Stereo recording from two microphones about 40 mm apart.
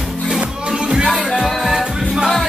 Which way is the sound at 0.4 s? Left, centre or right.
Right.